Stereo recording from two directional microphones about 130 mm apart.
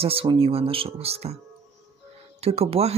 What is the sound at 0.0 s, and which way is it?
Speech, 45° right (ahead or behind).